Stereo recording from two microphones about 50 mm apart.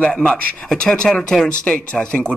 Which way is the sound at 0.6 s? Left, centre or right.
Centre.